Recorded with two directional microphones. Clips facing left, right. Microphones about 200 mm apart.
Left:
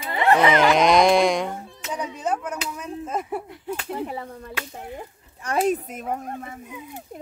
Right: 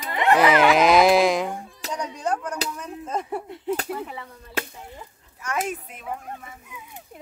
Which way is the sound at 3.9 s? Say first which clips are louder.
Left 3 dB; 35° left (ahead or behind).